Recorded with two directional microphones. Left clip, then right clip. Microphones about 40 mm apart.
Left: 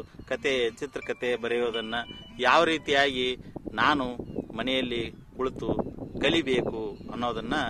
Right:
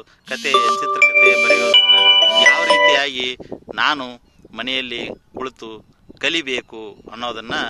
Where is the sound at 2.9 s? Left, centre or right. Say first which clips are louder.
Right 7 dB; left.